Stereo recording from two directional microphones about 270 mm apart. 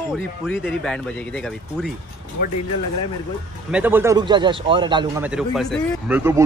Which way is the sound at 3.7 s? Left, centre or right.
Centre.